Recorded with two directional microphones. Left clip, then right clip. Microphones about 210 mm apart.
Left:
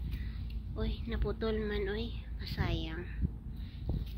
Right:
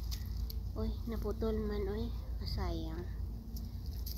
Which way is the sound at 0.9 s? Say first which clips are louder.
Left 2 dB; 5° right (ahead or behind).